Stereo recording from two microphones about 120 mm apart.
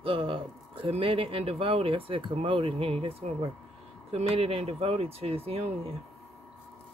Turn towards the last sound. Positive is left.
turn(degrees=-55)  # may be behind; listen again after turning